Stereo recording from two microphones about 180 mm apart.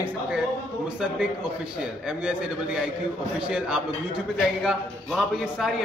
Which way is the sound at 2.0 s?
5° right (ahead or behind).